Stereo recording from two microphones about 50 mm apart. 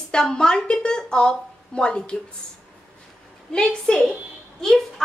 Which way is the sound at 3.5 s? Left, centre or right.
Centre.